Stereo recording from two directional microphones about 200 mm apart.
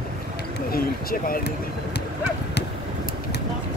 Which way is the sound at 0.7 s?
45° left (ahead or behind).